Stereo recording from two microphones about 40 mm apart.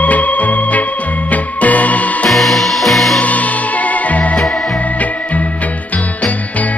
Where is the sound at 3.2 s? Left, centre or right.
Left.